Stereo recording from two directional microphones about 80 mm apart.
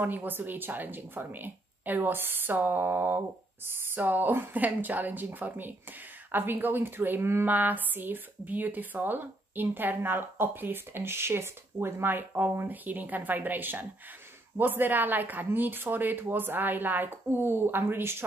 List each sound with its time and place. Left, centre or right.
0.0 s speech: right